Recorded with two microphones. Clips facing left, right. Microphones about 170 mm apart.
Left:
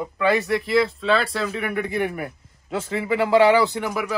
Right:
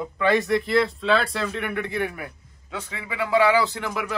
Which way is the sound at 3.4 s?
20° left (ahead or behind).